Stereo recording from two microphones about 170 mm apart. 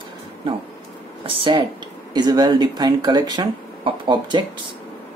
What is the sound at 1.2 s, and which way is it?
Speech, 30° right (ahead or behind).